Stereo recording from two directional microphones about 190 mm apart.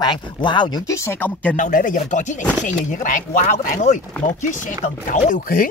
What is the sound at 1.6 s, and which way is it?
Speech, 45° left (ahead or behind).